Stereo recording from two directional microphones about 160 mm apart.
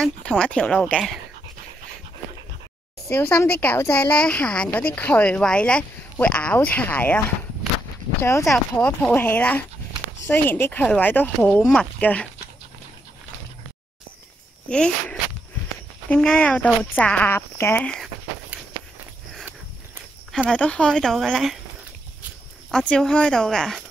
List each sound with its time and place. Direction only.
0.0 s a woman's voice: 5° left (ahead or behind)
3.1 s a woman's voice: 15° left (ahead or behind)
14.7 s a woman's voice: 5° left (ahead or behind)
18.5 s walk: 10° right (ahead or behind)
20.4 s speech: 5° left (ahead or behind)
22.7 s speech: 5° left (ahead or behind)